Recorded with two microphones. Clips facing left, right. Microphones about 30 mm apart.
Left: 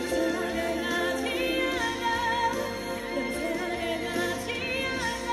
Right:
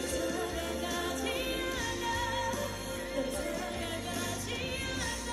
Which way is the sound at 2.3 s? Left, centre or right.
Left.